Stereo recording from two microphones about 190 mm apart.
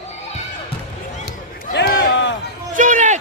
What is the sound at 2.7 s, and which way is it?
Speech, 40° right (ahead or behind).